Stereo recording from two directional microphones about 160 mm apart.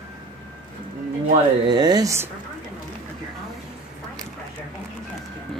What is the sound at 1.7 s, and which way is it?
Speech, 25° right (ahead or behind).